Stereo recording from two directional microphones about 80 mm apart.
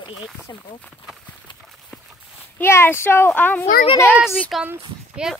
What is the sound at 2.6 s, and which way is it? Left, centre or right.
Speech, left.